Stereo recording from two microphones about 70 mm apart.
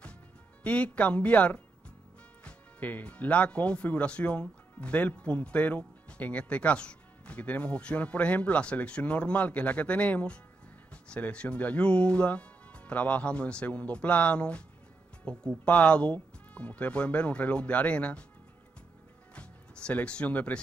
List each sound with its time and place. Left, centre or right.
0.7 s speech: centre
19.3 s music: centre